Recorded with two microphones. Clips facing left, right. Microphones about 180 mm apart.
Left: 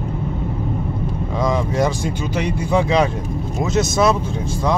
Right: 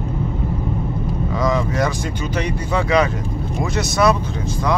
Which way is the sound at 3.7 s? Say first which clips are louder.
Left 1 dB; 25° left (ahead or behind).